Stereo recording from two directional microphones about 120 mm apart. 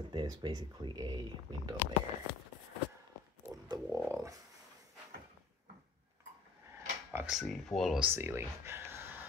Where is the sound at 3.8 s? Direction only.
20° right (ahead or behind).